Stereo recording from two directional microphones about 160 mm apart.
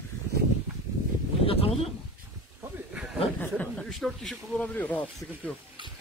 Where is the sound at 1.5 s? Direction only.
35° left (ahead or behind).